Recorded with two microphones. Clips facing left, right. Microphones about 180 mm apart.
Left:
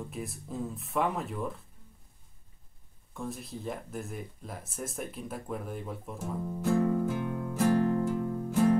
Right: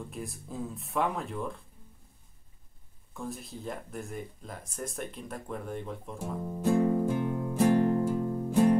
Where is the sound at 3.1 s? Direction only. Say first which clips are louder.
Left 1 dB; centre (ahead or behind).